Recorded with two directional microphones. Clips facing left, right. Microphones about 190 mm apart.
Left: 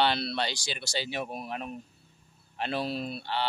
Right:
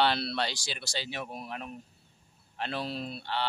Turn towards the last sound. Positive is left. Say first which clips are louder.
# left 2 dB
turn(degrees=5)  # may be behind; listen again after turning